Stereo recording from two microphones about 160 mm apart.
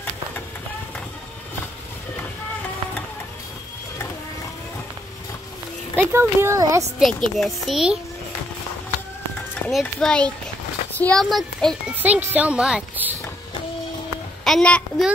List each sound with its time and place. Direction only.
5.9 s speech: 15° right (ahead or behind)
7.0 s a child's voice: 5° left (ahead or behind)
9.7 s a child's voice: centre (ahead or behind)
12.0 s speech: 10° right (ahead or behind)
14.4 s a child's voice: 5° left (ahead or behind)